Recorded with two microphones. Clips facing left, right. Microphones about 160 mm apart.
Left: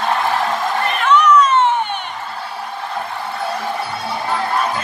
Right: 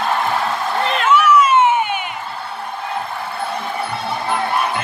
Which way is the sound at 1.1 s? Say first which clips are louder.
Left 1 dB; 5° right (ahead or behind).